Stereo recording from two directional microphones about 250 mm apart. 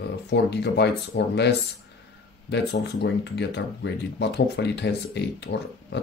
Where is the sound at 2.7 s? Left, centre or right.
Left.